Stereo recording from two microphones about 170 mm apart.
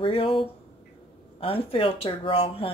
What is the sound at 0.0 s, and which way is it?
Speech, 30° left (ahead or behind).